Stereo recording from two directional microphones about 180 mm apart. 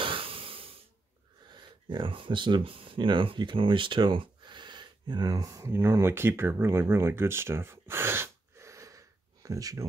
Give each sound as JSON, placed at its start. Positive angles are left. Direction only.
{"t": 0.0, "sound": "breathing", "side_deg": -30}
{"t": 1.5, "sound": "speech", "side_deg": -25}